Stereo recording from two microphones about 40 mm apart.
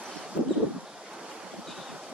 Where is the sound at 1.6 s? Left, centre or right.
Centre.